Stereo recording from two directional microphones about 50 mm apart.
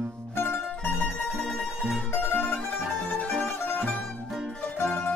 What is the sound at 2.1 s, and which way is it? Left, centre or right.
Music, left.